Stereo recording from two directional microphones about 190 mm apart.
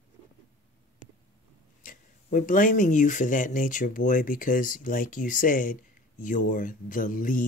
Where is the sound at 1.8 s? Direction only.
45° left (ahead or behind).